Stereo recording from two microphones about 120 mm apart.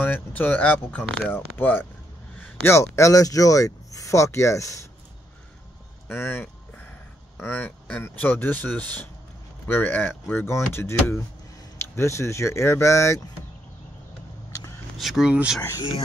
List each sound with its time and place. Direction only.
0.0 s speech: 15° left (ahead or behind)
6.0 s speech: 20° left (ahead or behind)
15.0 s speech: centre (ahead or behind)